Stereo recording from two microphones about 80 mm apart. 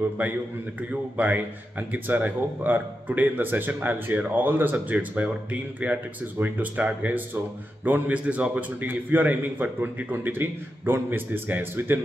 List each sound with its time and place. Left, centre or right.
0.2 s speech: right